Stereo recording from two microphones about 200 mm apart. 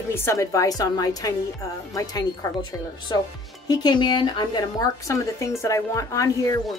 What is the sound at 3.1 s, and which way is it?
A woman's voice, 20° left (ahead or behind).